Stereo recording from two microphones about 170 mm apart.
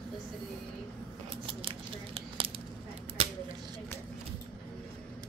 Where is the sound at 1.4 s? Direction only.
35° right (ahead or behind).